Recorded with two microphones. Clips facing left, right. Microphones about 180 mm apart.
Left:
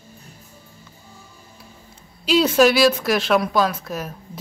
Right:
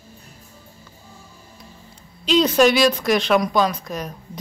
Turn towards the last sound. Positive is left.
turn(degrees=5)  # may be behind; listen again after turning